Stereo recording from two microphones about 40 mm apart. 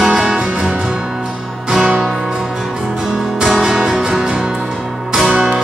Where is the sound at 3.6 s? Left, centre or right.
Centre.